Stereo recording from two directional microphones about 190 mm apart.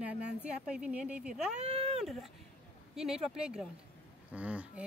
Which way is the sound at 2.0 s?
Centre (ahead or behind).